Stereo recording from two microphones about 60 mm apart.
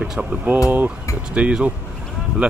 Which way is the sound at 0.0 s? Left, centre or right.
Centre.